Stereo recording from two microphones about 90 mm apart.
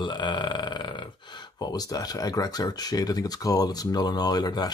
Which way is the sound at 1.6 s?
50° left (ahead or behind).